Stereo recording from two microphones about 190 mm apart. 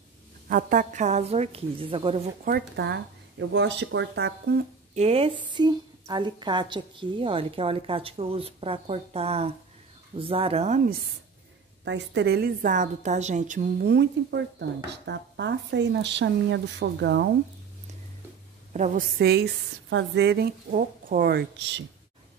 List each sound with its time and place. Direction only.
0.5 s a woman's voice: 45° right (ahead or behind); by 2.2 s 30° right (ahead or behind)
2.4 s speech: 60° right (ahead or behind)
4.9 s a woman's voice: 30° right (ahead or behind)
11.8 s a woman's voice: 70° right (ahead or behind); by 13.7 s 40° right (ahead or behind)
13.7 s speech: 60° right (ahead or behind)
18.7 s a woman's voice: 40° right (ahead or behind)
19.1 s speech: 60° right (ahead or behind)
19.9 s speech: 70° right (ahead or behind)